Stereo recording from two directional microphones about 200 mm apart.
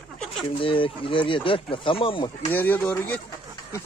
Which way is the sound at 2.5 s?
10° left (ahead or behind).